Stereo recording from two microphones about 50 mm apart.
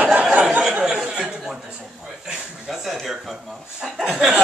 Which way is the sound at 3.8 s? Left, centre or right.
Centre.